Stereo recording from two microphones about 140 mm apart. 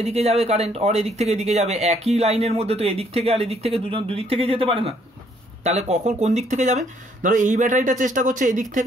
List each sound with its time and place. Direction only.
0.0 s speech: 50° right (ahead or behind); by 8.8 s 65° right (ahead or behind)